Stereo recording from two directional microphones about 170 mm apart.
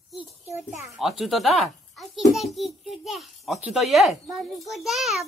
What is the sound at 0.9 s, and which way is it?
Speech, centre (ahead or behind).